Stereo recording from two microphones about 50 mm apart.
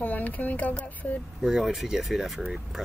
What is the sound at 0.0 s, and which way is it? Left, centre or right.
Speech, left.